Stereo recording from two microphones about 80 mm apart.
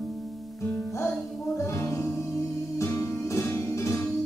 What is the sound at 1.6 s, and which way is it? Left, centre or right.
Music, left.